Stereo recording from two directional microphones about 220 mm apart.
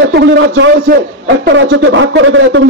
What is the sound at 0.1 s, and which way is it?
A man's voice, 55° right (ahead or behind).